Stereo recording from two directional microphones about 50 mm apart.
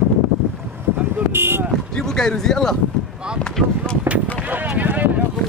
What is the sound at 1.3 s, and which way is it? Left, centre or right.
Speech, right.